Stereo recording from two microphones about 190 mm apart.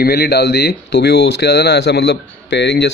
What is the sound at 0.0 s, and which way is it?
Speech, 55° left (ahead or behind).